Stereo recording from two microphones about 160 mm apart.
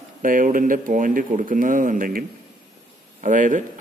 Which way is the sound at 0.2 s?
60° right (ahead or behind).